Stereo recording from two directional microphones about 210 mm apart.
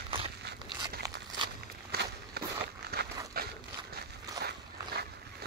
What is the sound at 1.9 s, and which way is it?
Walk, 50° right (ahead or behind).